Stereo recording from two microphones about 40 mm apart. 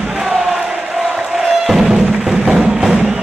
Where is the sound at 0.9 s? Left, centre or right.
Centre.